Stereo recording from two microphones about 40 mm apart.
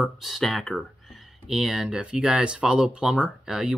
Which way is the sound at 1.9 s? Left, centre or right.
Right.